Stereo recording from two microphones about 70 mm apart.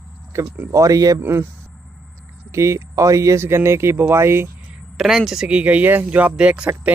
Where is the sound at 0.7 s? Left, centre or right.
Right.